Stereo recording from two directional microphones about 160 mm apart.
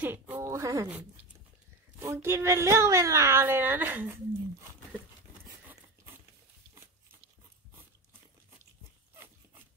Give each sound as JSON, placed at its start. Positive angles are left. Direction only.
{"t": 0.0, "sound": "speech", "side_deg": -10}
{"t": 2.0, "sound": "speech", "side_deg": -15}